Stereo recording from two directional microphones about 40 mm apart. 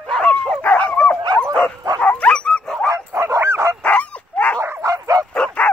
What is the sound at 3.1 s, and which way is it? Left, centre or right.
Dog, right.